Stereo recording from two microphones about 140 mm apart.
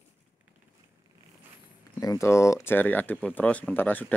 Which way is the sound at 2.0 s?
25° left (ahead or behind).